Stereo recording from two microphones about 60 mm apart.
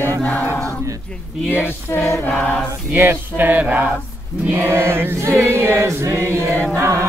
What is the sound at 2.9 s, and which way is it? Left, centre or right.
Choir, right.